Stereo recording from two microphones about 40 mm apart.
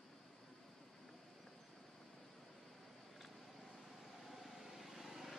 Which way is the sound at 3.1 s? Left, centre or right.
Centre.